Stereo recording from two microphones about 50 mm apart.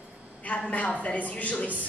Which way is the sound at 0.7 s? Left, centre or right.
Left.